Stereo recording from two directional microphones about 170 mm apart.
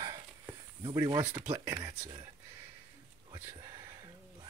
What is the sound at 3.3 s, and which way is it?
Whispering, 20° right (ahead or behind).